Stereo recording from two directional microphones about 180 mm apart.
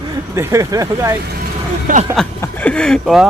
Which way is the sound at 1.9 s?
50° right (ahead or behind).